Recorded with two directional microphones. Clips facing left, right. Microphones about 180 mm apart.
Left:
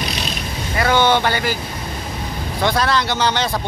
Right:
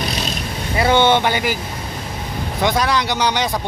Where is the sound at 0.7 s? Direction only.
25° right (ahead or behind).